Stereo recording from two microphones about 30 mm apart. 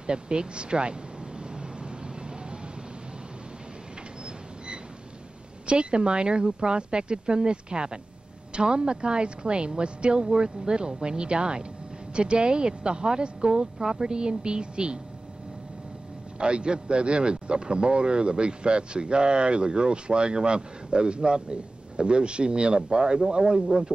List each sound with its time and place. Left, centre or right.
0.0 s speech: right
1.5 s vehicle: right
5.7 s speech: right
16.3 s speech: right